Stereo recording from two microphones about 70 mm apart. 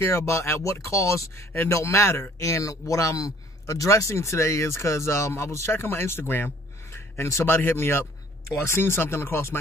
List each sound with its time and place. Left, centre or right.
0.0 s speech: left